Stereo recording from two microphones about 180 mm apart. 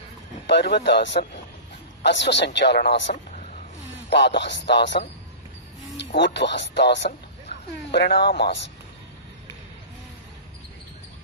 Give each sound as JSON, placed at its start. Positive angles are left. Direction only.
{"t": 0.5, "sound": "speech", "side_deg": 75}
{"t": 5.9, "sound": "speech", "side_deg": 75}